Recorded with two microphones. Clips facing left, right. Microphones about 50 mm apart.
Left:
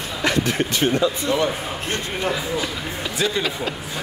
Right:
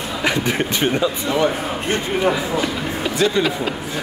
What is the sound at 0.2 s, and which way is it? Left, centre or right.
Speech, centre.